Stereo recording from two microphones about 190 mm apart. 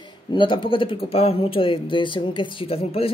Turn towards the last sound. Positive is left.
turn(degrees=30)  # may be behind; listen again after turning